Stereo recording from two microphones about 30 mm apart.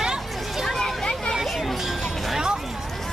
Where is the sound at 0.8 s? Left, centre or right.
Left.